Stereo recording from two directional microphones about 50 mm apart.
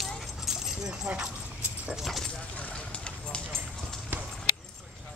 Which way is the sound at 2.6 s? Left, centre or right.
Left.